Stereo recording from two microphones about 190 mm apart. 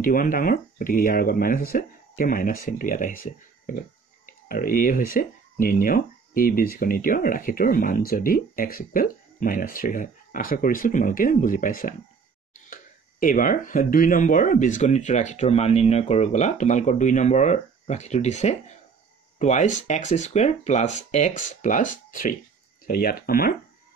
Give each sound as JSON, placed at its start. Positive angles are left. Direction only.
{"t": 0.0, "sound": "speech", "side_deg": 45}